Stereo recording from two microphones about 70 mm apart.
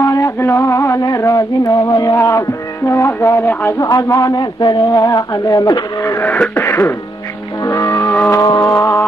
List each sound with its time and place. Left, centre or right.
0.0 s a sound: left
1.3 s speech: left
2.1 s vehicle: left
2.9 s music: left
3.8 s speech: left
5.0 s speech: left
5.9 s vehicle: left
6.5 s music: left
7.6 s music: left
8.4 s vehicle: left